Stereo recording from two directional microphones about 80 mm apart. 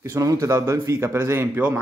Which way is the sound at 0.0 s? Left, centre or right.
Right.